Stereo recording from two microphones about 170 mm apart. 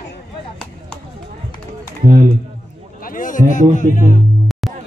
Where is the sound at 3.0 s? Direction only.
50° left (ahead or behind).